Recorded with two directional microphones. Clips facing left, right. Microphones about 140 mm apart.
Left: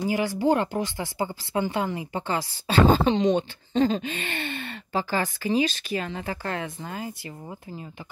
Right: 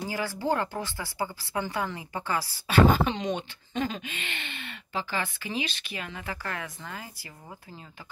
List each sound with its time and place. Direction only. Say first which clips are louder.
0.1 s speech: left 6 dB; 15° left (ahead or behind)